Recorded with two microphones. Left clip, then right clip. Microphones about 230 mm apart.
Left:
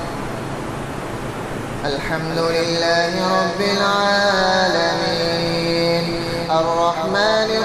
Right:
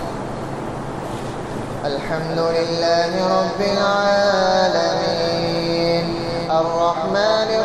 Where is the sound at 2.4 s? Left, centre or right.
Left.